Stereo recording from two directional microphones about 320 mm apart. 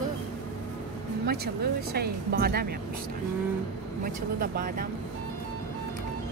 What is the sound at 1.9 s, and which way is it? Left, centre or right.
Speech, right.